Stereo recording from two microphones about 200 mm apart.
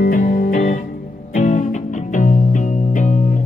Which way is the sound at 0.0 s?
45° left (ahead or behind).